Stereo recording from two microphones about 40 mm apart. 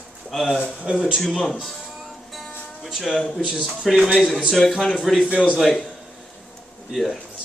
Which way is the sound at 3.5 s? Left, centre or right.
Centre.